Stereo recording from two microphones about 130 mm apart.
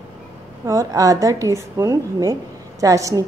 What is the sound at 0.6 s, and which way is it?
A woman's voice, 25° right (ahead or behind).